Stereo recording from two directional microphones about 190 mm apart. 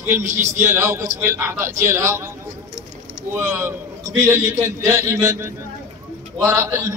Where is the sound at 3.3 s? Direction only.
15° right (ahead or behind).